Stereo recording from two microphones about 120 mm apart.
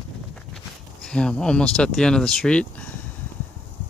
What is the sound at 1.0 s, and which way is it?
Speech, 5° left (ahead or behind).